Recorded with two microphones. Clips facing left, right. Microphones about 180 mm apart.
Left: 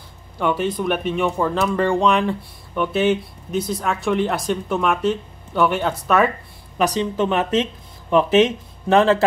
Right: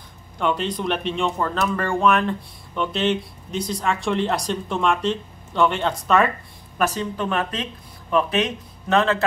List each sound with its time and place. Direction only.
0.4 s speech: 10° left (ahead or behind)
6.8 s speech: 20° left (ahead or behind)